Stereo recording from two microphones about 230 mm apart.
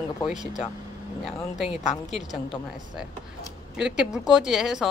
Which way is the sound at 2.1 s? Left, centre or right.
Centre.